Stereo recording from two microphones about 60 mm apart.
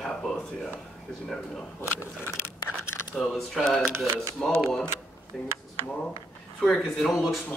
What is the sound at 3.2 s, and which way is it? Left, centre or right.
Speech, centre.